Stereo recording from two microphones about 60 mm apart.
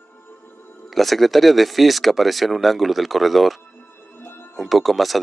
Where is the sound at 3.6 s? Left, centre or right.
Left.